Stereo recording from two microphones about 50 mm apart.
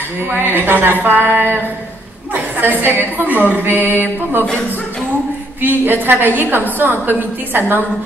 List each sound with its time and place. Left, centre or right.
0.3 s a woman's voice: right
3.5 s mantra: right
5.6 s a woman's voice: right